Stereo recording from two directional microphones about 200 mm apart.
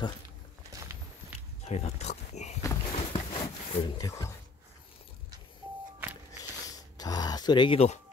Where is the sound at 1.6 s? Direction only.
35° left (ahead or behind).